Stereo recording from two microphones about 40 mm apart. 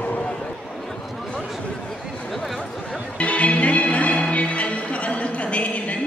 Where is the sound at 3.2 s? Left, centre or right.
Left.